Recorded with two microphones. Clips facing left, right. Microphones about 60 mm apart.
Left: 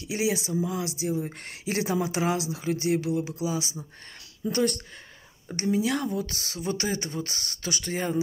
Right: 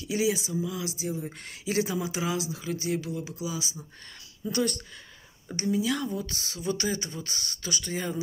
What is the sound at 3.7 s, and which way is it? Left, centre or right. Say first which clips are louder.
Speech: left 3 dB; left.